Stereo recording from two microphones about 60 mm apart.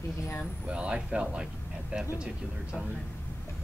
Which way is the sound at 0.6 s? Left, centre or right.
Centre.